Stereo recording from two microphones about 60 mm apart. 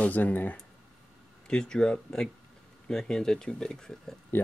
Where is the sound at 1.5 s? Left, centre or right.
Centre.